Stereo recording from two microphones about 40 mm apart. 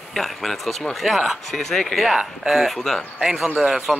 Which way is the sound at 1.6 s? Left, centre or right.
Centre.